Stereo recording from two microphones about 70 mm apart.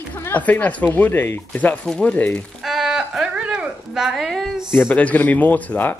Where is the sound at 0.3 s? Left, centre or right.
Left.